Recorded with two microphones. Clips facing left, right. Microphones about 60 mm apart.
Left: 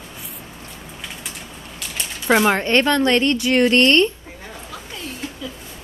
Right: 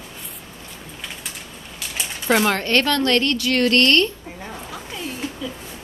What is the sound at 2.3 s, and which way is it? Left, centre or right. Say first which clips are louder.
A woman's voice: left 2 dB; centre.